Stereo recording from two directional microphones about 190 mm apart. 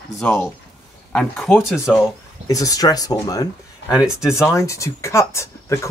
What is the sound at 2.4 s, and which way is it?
Speech, 20° left (ahead or behind).